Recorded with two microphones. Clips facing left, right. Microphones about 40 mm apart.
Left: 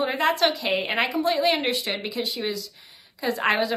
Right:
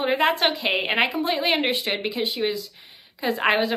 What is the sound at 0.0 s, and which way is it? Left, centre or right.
A woman's voice, right.